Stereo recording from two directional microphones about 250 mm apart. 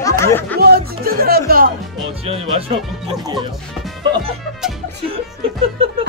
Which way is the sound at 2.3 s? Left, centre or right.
Right.